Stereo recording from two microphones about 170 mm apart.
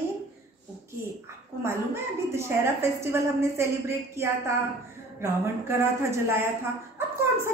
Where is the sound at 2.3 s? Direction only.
15° right (ahead or behind).